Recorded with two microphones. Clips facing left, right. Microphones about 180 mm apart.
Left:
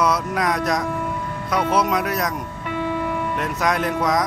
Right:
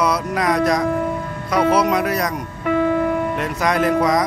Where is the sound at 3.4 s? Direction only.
Centre (ahead or behind).